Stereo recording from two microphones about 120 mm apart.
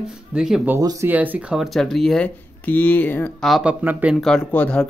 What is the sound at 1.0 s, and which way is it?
Speech, 15° right (ahead or behind).